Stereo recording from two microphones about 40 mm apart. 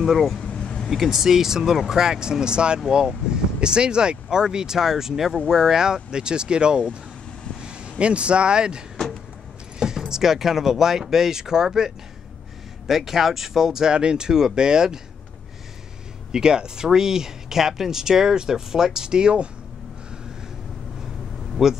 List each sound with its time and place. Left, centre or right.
0.0 s speech: centre
0.5 s vehicle: centre
0.8 s speech: centre; by 7.0 s right
8.0 s speech: right
16.3 s speech: centre
21.6 s speech: centre